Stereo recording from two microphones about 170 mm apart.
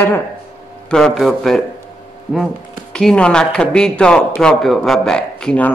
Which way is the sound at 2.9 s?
5° left (ahead or behind).